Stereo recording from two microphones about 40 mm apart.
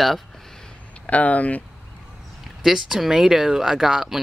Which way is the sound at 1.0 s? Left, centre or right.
Left.